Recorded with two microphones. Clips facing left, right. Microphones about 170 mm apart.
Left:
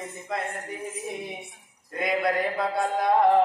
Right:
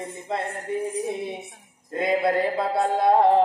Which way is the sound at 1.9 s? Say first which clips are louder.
Right 4 dB; 30° right (ahead or behind).